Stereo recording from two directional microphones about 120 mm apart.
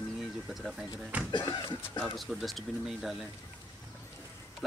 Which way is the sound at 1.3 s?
35° left (ahead or behind).